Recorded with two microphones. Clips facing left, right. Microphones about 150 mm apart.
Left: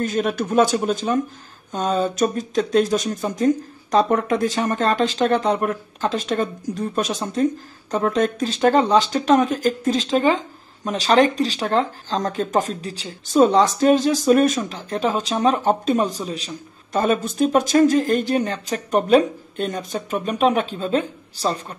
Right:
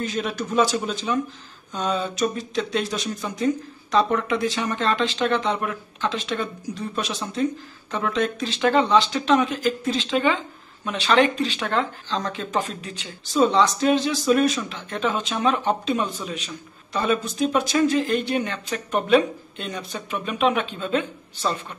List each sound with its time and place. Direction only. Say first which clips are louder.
0.0 s speech: left 5 dB; 50° left (ahead or behind)
13.3 s speech: left 4 dB; 45° left (ahead or behind)